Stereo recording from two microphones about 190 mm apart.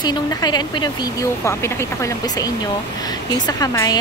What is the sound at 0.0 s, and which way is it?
Speech, 20° left (ahead or behind).